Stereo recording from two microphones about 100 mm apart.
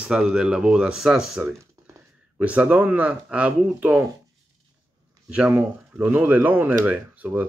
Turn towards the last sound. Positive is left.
turn(degrees=-15)  # may be behind; listen again after turning